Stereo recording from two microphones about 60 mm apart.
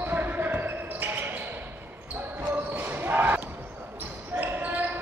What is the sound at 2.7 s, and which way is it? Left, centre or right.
Basketball bounce, right.